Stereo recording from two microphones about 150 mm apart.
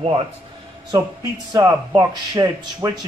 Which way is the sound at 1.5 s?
20° right (ahead or behind).